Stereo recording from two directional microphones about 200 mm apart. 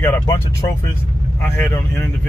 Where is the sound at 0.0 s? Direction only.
15° left (ahead or behind).